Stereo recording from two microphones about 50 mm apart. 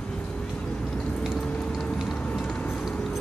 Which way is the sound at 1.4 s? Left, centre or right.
Centre.